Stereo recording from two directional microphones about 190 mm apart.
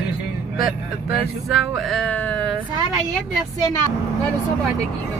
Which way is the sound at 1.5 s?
Centre (ahead or behind).